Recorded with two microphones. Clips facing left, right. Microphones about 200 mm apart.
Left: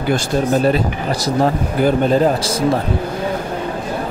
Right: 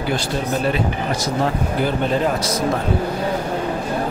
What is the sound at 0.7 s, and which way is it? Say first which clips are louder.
Speech: left 4 dB; 40° left (ahead or behind).